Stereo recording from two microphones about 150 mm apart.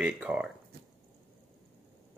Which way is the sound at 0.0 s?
5° right (ahead or behind).